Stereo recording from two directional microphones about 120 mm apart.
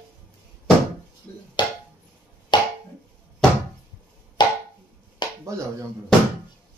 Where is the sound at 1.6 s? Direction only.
40° left (ahead or behind).